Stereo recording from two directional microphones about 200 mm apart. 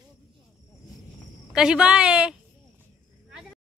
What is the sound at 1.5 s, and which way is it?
Speech, 5° right (ahead or behind).